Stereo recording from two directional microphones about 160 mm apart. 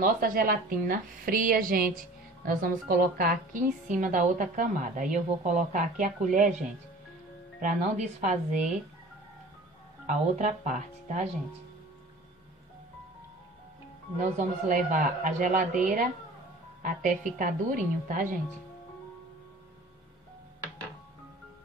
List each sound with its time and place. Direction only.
0.0 s a woman's voice: 60° right (ahead or behind)
7.6 s speech: 50° right (ahead or behind)
10.0 s speech: 50° right (ahead or behind)
14.1 s a woman's voice: 55° right (ahead or behind)